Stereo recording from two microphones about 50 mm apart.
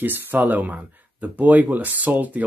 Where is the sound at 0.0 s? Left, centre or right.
Right.